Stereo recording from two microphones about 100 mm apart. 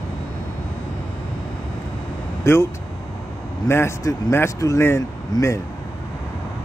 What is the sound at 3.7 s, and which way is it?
Speech, 25° left (ahead or behind).